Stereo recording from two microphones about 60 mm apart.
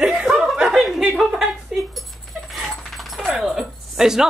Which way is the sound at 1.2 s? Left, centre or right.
Centre.